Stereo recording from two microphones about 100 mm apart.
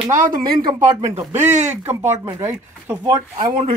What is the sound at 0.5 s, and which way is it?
Speech, 45° right (ahead or behind).